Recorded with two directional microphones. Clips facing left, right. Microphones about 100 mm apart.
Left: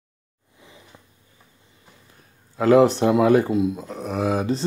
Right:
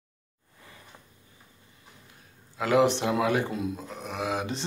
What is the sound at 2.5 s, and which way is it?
Speech, 40° left (ahead or behind).